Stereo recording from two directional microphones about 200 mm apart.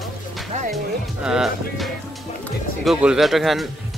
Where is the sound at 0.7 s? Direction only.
Centre (ahead or behind).